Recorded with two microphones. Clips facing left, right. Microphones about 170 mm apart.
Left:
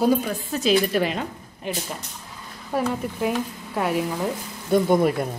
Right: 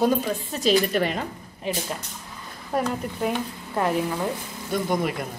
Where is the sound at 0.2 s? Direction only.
Centre (ahead or behind).